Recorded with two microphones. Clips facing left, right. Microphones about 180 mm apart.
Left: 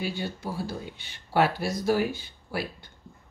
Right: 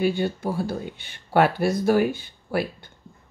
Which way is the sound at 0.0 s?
55° right (ahead or behind).